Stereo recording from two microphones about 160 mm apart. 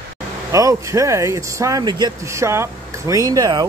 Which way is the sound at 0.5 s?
20° right (ahead or behind).